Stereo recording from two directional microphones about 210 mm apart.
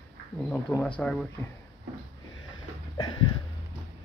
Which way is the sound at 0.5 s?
5° left (ahead or behind).